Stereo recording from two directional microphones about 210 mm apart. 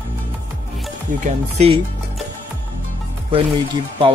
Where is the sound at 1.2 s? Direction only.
30° right (ahead or behind).